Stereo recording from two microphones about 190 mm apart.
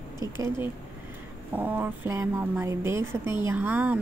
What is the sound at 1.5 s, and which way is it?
A woman's voice, 10° right (ahead or behind).